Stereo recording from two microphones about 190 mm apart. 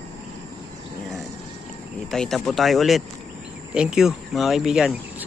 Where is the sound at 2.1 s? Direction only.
Centre (ahead or behind).